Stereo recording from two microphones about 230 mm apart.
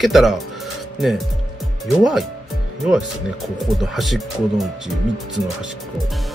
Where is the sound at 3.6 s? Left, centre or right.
Centre.